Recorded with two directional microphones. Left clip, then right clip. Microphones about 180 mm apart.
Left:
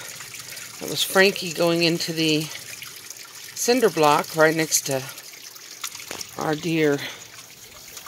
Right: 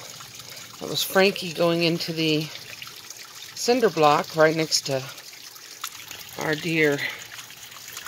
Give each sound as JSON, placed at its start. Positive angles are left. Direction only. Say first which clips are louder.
{"t": 0.7, "sound": "speech", "louder": "left 2 dB", "side_deg": -5}
{"t": 3.6, "sound": "speech", "louder": "left 1 dB", "side_deg": 0}
{"t": 6.3, "sound": "speech", "louder": "even", "side_deg": 10}